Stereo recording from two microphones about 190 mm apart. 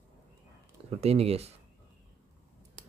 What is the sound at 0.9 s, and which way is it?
Speech, 35° right (ahead or behind).